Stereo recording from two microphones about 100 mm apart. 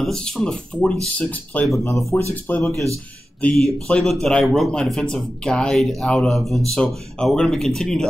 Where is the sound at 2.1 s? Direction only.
30° left (ahead or behind).